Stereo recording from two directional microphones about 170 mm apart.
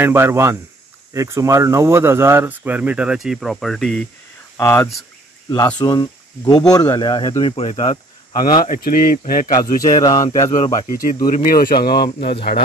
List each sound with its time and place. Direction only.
0.0 s speech: 15° right (ahead or behind); by 4.0 s 5° left (ahead or behind)
4.6 s speech: 15° left (ahead or behind); by 8.0 s 35° left (ahead or behind)
8.3 s speech: 55° left (ahead or behind)
9.8 s speech: 20° left (ahead or behind)
10.5 s speech: 45° left (ahead or behind); by 12.4 s 70° left (ahead or behind)